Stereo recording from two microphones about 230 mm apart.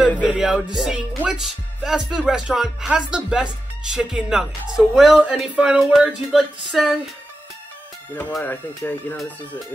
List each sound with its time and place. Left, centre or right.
0.0 s speech: centre
8.1 s speech: centre